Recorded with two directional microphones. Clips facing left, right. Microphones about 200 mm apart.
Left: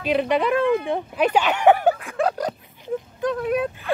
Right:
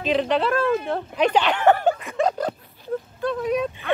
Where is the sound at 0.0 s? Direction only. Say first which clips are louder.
Left 1 dB; 10° left (ahead or behind).